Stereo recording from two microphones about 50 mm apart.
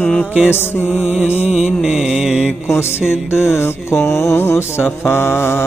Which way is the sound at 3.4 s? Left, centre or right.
Left.